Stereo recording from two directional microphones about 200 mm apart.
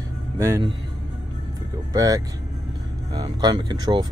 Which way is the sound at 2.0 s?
20° right (ahead or behind).